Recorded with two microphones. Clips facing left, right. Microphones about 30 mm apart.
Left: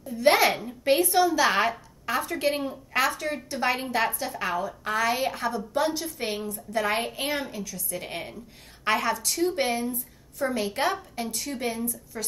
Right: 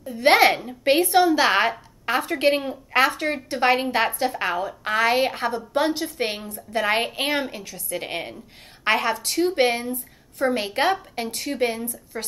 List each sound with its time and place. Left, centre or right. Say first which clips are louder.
0.0 s a woman's voice: right 4 dB; right